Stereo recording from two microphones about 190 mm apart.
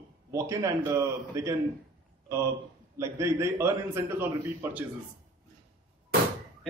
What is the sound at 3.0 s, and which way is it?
A man's voice, 15° right (ahead or behind).